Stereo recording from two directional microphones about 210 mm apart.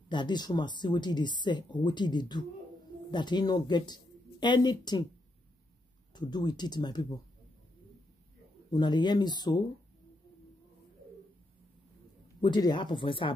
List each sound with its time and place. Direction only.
0.1 s speech: 20° left (ahead or behind)
6.1 s speech: 20° left (ahead or behind)
8.6 s speech: 20° left (ahead or behind)
12.4 s speech: 20° left (ahead or behind)